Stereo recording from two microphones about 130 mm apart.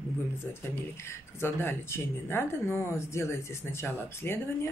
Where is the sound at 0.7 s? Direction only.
20° left (ahead or behind).